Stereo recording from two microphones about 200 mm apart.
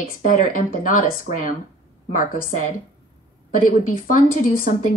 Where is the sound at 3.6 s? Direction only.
40° left (ahead or behind).